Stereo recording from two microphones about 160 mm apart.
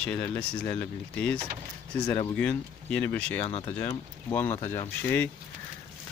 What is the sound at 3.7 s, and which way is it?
Speech, 15° left (ahead or behind).